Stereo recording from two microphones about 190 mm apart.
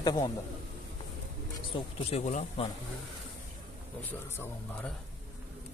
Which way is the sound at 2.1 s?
35° left (ahead or behind).